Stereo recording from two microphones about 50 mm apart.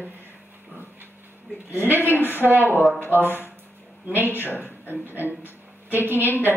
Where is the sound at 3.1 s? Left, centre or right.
Right.